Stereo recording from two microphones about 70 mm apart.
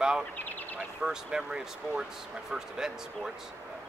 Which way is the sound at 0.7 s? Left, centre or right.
Centre.